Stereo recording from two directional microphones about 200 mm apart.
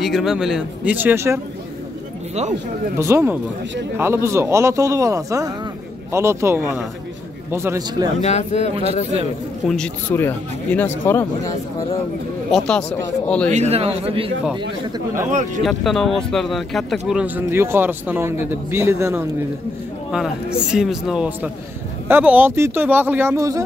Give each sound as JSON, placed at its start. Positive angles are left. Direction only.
{"t": 0.0, "sound": "speech", "side_deg": 0}
{"t": 3.0, "sound": "speech", "side_deg": -15}
{"t": 8.2, "sound": "speech", "side_deg": 35}
{"t": 9.7, "sound": "speech", "side_deg": 5}
{"t": 12.4, "sound": "speech", "side_deg": 0}
{"t": 13.5, "sound": "a man's voice", "side_deg": -35}
{"t": 15.6, "sound": "speech", "side_deg": 0}
{"t": 20.5, "sound": "speech", "side_deg": -5}